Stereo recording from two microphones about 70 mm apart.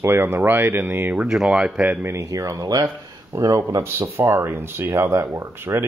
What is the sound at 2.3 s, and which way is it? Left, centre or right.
Speech, right.